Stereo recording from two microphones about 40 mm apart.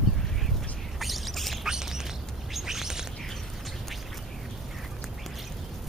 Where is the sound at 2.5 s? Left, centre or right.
Centre.